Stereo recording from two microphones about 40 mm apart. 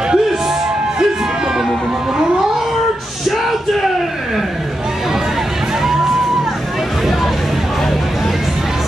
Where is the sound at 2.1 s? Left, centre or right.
Centre.